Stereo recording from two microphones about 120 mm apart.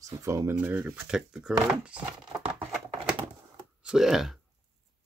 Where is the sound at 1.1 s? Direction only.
5° right (ahead or behind).